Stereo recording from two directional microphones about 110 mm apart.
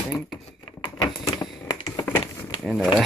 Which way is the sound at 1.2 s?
35° left (ahead or behind).